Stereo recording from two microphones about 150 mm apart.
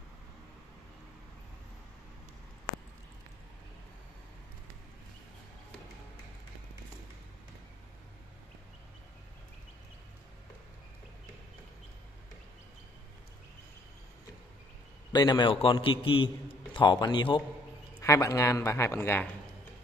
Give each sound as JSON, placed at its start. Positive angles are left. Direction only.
{"t": 15.1, "sound": "a man's voice", "side_deg": 30}
{"t": 18.0, "sound": "speech", "side_deg": 20}